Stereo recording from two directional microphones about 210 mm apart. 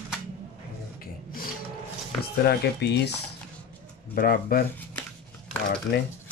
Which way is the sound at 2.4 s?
50° left (ahead or behind).